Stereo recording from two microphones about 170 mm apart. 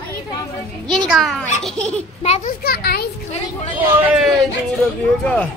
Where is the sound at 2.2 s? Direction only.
40° left (ahead or behind).